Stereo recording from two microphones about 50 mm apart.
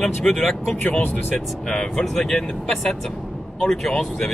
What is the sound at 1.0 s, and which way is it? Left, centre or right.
Speech, left.